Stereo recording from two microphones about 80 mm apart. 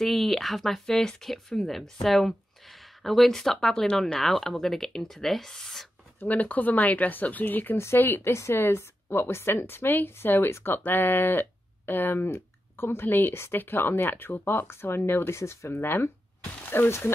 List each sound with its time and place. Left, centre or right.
0.0 s speech: centre
6.1 s a woman's voice: centre